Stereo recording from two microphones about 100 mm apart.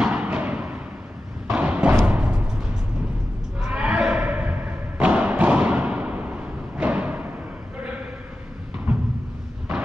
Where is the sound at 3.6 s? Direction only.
10° right (ahead or behind).